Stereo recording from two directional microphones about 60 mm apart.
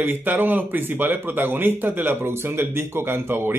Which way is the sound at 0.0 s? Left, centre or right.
Right.